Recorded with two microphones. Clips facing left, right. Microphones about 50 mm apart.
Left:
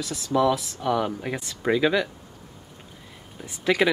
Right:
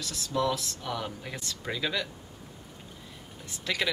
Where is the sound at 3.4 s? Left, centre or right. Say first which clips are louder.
Left 10 dB; centre.